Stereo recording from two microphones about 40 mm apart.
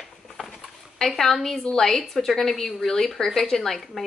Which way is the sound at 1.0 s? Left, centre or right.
Centre.